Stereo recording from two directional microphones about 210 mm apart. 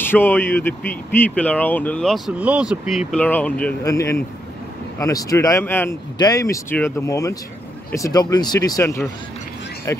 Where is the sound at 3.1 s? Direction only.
5° left (ahead or behind).